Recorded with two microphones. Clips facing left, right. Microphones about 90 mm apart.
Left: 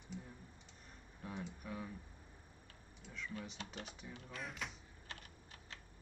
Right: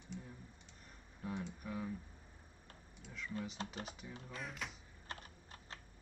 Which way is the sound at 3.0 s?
Centre (ahead or behind).